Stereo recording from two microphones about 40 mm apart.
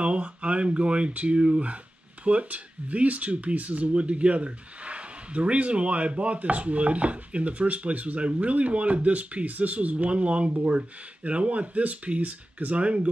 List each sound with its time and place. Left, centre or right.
0.0 s speech: right